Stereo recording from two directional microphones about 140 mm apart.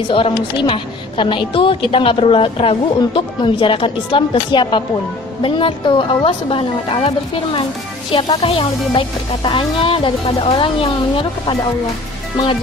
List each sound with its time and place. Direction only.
0.7 s a woman's voice: 35° left (ahead or behind)